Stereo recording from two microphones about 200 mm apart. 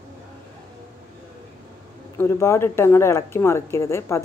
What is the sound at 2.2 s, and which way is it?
Speech, 15° left (ahead or behind).